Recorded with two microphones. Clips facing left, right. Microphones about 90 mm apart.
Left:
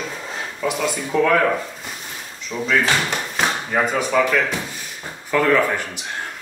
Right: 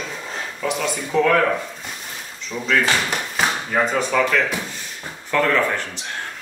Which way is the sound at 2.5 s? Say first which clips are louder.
Left 3 dB; 15° left (ahead or behind).